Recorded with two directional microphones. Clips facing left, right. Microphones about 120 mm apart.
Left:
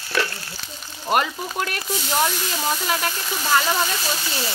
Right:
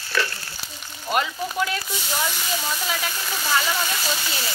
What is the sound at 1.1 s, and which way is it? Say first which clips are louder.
Frying: left 2 dB; 50° left (ahead or behind).